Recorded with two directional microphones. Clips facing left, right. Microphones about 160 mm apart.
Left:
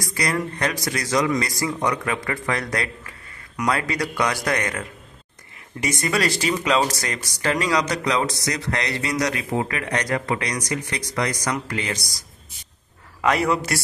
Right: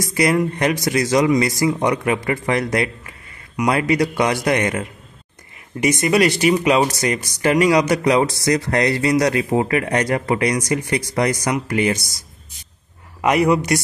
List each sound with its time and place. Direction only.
0.0 s speech: 25° right (ahead or behind)
12.0 s speech: centre (ahead or behind)
13.2 s a man's voice: 20° right (ahead or behind)